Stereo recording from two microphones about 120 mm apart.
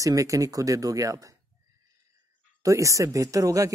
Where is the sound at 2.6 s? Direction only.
25° right (ahead or behind).